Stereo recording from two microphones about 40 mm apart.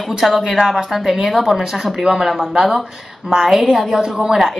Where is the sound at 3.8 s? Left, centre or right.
Centre.